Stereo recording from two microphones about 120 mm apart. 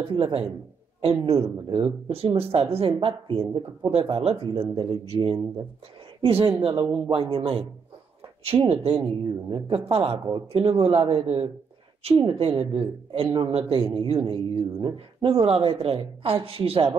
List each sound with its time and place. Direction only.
0.1 s speech: 50° right (ahead or behind)
8.6 s speech: 50° right (ahead or behind)